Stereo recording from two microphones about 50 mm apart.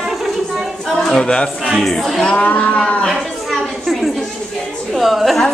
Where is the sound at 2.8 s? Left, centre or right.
Left.